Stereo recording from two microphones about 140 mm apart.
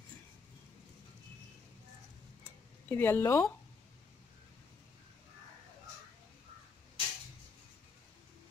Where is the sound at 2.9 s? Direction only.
15° left (ahead or behind).